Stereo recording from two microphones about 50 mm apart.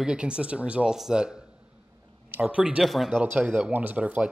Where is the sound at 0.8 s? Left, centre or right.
Centre.